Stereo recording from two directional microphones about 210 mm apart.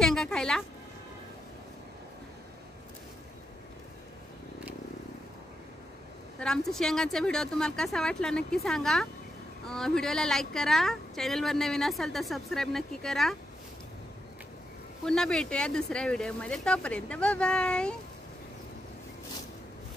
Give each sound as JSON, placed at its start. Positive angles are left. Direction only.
{"t": 0.0, "sound": "a sound", "side_deg": 0}
{"t": 6.4, "sound": "speech", "side_deg": 0}
{"t": 15.0, "sound": "speech", "side_deg": 5}